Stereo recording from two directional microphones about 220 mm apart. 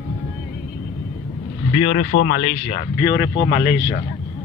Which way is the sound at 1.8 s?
35° left (ahead or behind).